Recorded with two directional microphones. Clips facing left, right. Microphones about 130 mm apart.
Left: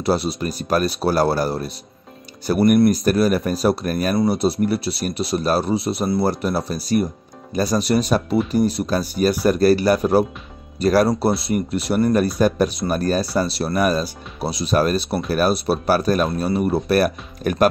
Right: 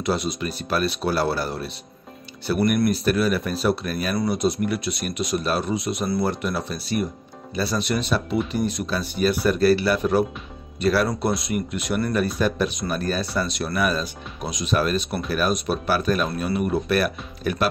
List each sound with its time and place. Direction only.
0.0 s speech: 35° left (ahead or behind)
4.3 s speech: 35° left (ahead or behind)